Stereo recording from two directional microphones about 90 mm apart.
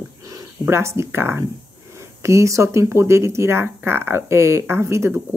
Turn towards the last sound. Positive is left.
turn(degrees=-30)  # may be behind; listen again after turning